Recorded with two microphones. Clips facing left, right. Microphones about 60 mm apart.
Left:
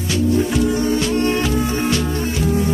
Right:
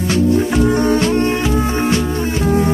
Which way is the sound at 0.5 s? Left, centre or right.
Right.